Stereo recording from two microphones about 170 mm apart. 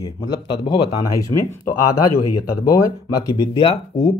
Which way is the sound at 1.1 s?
20° left (ahead or behind).